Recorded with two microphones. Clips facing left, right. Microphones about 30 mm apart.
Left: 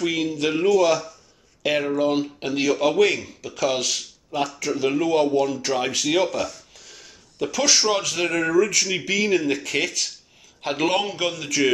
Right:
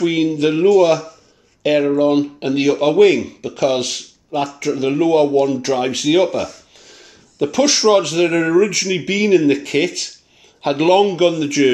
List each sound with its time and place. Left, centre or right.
0.1 s speech: centre
0.7 s speech: centre